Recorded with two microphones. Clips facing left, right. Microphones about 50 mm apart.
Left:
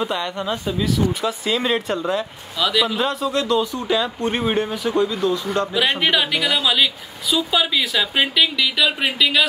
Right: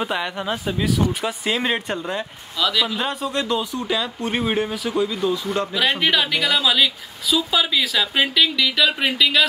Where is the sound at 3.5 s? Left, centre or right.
Centre.